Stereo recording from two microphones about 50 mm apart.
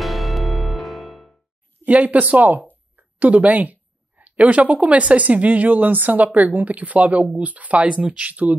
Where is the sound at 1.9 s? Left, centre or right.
Right.